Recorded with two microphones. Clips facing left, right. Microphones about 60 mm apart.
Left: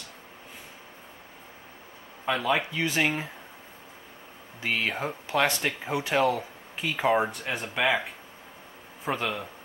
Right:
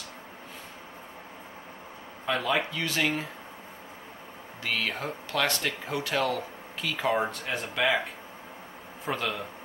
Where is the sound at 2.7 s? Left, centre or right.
Centre.